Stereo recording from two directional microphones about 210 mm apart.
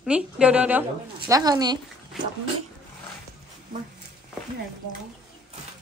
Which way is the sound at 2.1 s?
Centre (ahead or behind).